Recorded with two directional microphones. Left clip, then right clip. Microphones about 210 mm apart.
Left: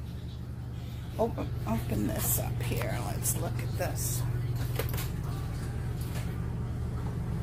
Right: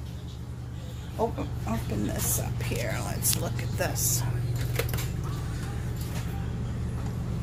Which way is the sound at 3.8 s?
20° right (ahead or behind).